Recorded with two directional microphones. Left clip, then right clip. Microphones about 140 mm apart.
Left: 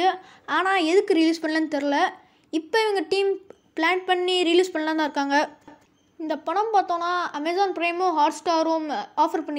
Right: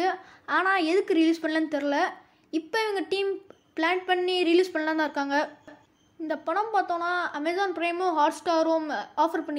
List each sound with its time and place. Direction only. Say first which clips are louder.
0.0 s a woman's voice: left 5 dB; 30° left (ahead or behind)